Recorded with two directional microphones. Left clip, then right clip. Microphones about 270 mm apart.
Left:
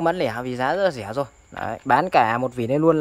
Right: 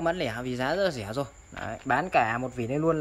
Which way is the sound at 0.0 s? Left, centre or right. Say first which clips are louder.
Left 6 dB; centre.